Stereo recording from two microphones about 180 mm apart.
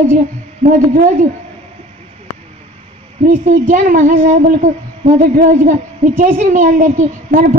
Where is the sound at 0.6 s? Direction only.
50° right (ahead or behind).